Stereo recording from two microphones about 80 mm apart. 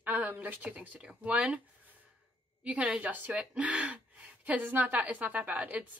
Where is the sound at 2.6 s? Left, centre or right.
Centre.